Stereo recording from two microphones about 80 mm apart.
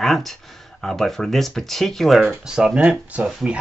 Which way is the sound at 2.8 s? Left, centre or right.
Centre.